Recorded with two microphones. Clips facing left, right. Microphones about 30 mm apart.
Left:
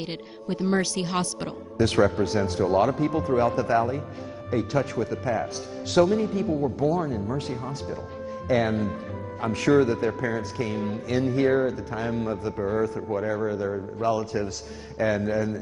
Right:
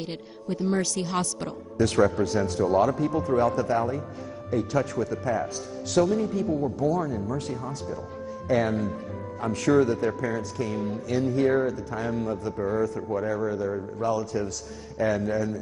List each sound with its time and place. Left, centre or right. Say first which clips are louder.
0.5 s speech: left 1 dB; left